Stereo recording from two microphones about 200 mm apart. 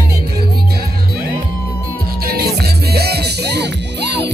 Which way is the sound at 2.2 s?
50° right (ahead or behind).